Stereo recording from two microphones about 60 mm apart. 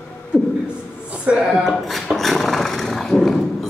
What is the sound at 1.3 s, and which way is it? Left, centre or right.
Speech, centre.